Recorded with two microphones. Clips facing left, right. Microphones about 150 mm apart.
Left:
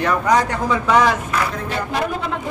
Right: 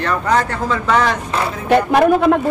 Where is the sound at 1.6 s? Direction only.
65° right (ahead or behind).